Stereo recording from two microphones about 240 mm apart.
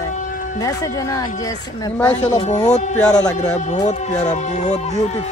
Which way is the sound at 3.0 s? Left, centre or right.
Centre.